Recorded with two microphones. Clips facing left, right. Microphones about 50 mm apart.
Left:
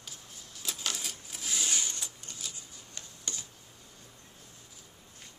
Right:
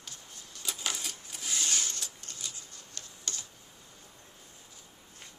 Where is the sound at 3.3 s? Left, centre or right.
Centre.